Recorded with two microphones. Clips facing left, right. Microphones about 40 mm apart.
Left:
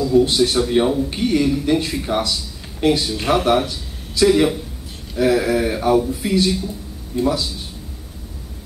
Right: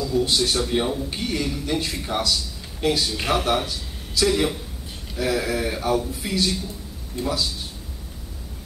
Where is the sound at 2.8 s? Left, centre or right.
Left.